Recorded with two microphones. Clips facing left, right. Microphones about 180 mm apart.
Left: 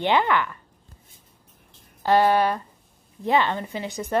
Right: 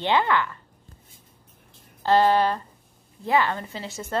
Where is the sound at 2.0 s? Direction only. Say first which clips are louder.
Even; 10° left (ahead or behind).